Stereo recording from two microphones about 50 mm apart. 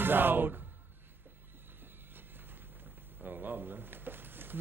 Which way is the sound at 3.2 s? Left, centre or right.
Right.